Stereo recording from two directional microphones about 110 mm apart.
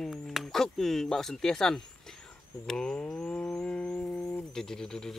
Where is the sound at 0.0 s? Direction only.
Centre (ahead or behind).